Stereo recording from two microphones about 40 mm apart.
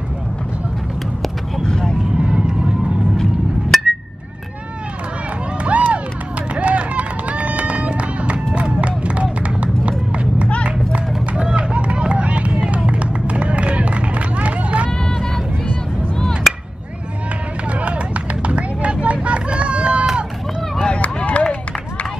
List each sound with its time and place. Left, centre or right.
1.6 s vehicle: centre
2.0 s vehicle: right
3.7 s a sound: centre
5.6 s crowd: right
6.5 s run: right
10.6 s music: right
11.4 s run: right
14.9 s vehicle: centre
16.5 s chop: centre
17.6 s a sound: right
19.2 s run: right
20.8 s run: left